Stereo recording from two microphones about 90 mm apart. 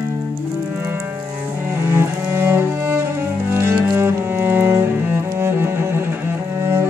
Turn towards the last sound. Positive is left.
turn(degrees=-30)  # may be behind; listen again after turning